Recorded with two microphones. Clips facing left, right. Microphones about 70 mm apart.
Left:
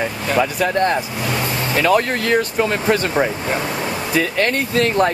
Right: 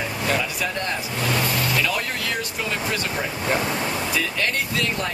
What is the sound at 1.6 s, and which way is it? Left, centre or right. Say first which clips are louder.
Vehicle: left 4 dB; left.